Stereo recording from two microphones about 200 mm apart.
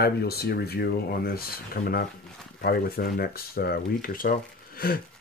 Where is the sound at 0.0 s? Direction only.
50° left (ahead or behind).